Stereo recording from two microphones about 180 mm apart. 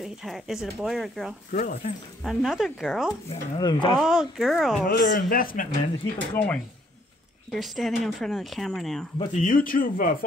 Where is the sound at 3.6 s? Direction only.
25° left (ahead or behind).